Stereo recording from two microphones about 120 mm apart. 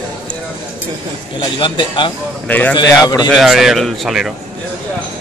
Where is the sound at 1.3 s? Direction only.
40° left (ahead or behind).